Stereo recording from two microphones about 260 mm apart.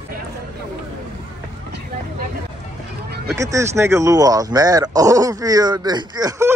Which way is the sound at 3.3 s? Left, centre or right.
Centre.